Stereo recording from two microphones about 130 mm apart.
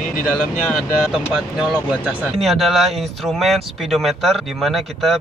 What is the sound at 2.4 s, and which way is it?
Speech, centre (ahead or behind).